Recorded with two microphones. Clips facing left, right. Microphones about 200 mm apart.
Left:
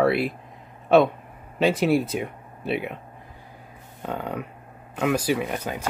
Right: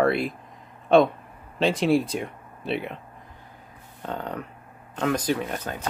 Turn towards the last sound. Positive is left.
turn(degrees=10)  # may be behind; listen again after turning